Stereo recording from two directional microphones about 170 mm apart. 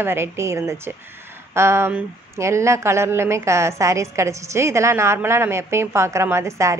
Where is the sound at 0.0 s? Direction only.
15° right (ahead or behind).